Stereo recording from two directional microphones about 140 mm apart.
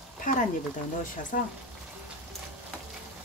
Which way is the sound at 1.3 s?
90° left.